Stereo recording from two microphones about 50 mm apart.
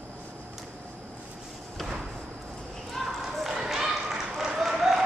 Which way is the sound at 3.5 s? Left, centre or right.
Centre.